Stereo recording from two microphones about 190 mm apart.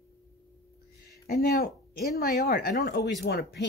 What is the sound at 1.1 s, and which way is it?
Speech, 55° left (ahead or behind).